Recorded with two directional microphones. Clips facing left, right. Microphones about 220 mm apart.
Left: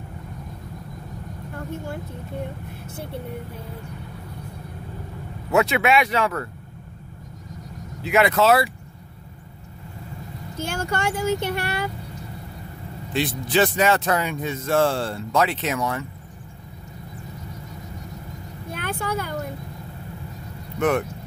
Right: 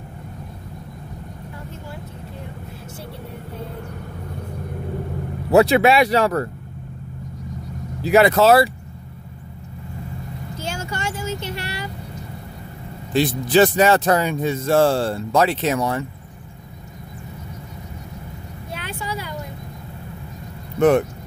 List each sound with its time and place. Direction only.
5.5 s speech: 35° right (ahead or behind)
8.0 s speech: 35° right (ahead or behind)
10.6 s speech: 55° left (ahead or behind)
13.1 s speech: 40° right (ahead or behind)
18.7 s vehicle: 50° left (ahead or behind)